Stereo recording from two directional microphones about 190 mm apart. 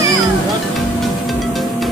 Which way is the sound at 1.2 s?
Centre (ahead or behind).